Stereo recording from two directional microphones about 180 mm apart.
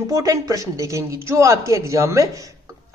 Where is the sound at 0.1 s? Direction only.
20° right (ahead or behind).